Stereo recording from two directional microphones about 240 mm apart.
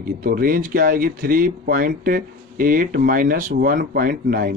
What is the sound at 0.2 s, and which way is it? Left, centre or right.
Speech, right.